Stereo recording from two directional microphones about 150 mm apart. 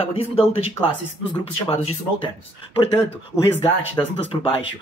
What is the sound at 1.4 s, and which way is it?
Speech, 40° left (ahead or behind).